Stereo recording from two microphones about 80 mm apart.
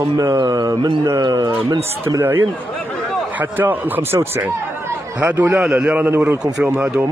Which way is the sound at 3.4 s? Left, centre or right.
Right.